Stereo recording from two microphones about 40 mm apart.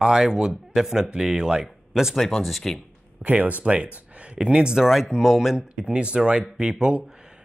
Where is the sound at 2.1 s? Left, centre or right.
Centre.